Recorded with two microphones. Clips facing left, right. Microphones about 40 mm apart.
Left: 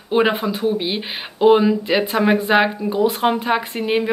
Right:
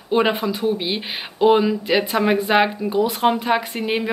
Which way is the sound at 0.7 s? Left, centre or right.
Centre.